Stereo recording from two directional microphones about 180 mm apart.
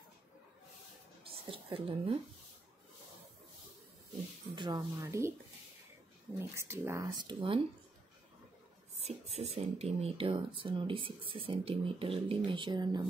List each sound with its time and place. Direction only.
1.5 s speech: 30° right (ahead or behind)
4.6 s a woman's voice: 20° right (ahead or behind)
6.5 s a woman's voice: 15° right (ahead or behind)
7.2 s speech: 30° right (ahead or behind)
9.0 s speech: 35° right (ahead or behind)